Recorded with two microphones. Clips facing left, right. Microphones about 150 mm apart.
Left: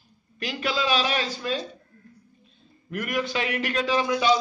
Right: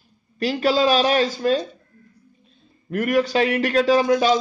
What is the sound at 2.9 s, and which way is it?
A man's voice, 40° right (ahead or behind).